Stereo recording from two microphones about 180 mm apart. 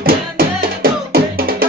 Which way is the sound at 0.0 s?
55° right (ahead or behind).